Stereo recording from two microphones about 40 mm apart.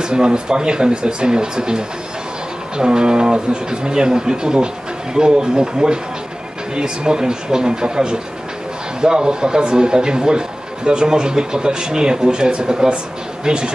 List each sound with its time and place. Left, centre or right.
0.0 s speech: right